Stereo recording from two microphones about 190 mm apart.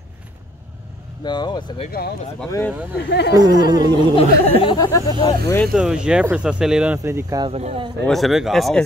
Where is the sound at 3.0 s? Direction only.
65° left (ahead or behind).